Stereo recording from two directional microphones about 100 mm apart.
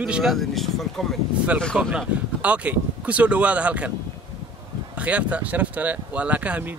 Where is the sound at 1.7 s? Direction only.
10° right (ahead or behind).